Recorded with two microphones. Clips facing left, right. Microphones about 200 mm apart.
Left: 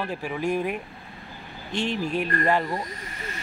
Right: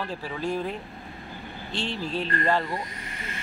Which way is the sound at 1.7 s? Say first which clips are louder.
Left 4 dB; 15° left (ahead or behind).